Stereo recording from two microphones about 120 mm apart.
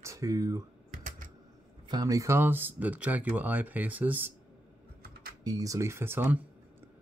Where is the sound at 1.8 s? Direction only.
35° right (ahead or behind); by 4.3 s 15° right (ahead or behind).